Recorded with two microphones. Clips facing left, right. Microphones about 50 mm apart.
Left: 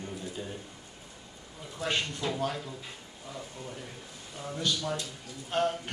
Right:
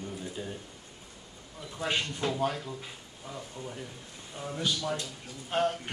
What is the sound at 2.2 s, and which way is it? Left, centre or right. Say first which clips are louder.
Speech: right 4 dB; right.